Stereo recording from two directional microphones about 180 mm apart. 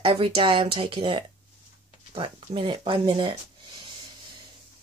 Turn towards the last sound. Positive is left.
turn(degrees=-30)  # may be behind; listen again after turning